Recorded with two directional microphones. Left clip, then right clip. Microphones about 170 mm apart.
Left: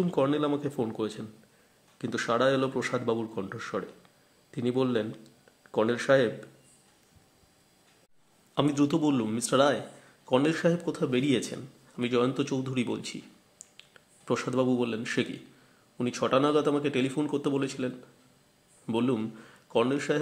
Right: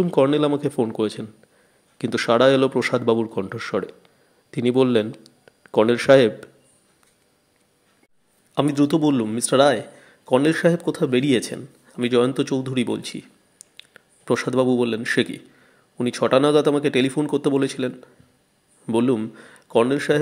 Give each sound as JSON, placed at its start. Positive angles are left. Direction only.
{"t": 0.0, "sound": "a man's voice", "side_deg": -30}
{"t": 8.5, "sound": "a man's voice", "side_deg": -25}